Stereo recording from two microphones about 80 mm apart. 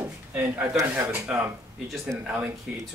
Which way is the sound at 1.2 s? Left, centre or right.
Centre.